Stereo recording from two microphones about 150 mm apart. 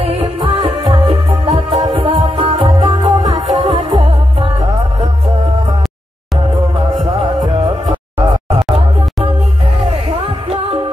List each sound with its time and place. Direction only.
0.0 s music: 40° right (ahead or behind)
7.4 s music: 40° right (ahead or behind)